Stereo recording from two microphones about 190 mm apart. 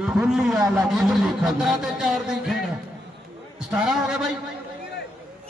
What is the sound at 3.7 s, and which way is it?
Speech, centre (ahead or behind).